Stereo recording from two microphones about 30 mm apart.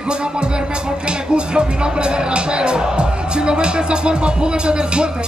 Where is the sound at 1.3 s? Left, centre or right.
Right.